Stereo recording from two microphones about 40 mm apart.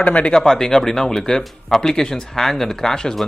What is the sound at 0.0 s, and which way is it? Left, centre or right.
Speech, left.